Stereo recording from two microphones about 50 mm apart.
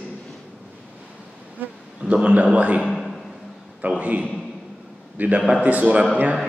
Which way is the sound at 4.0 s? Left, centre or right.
Right.